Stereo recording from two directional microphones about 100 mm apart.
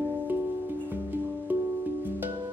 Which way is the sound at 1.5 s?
20° right (ahead or behind).